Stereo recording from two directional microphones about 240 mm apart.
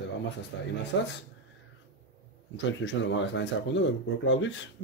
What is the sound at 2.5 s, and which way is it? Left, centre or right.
Speech, left.